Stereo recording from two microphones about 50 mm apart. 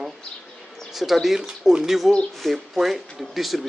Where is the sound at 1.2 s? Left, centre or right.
Centre.